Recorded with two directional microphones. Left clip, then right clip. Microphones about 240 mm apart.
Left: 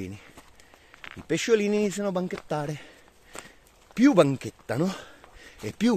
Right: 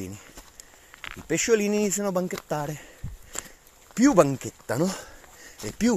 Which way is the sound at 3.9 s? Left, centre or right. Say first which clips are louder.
Right 1 dB; centre.